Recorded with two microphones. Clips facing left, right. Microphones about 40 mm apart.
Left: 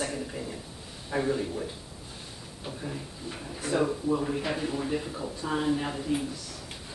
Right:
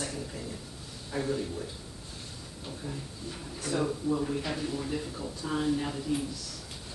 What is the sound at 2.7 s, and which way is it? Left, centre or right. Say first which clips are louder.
Speech: left 3 dB; left.